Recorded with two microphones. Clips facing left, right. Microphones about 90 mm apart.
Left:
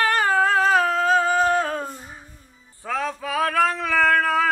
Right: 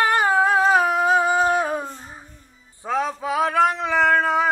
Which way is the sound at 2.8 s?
20° right (ahead or behind).